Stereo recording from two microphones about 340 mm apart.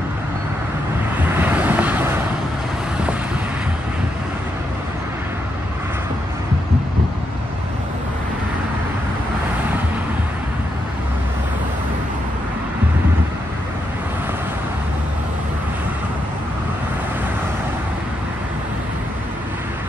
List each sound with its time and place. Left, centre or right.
1.3 s vehicle: centre